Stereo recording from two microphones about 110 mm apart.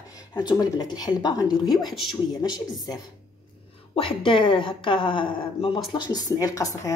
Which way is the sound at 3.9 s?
55° left (ahead or behind).